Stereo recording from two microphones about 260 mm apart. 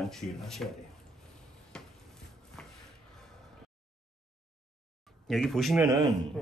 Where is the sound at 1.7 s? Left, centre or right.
Centre.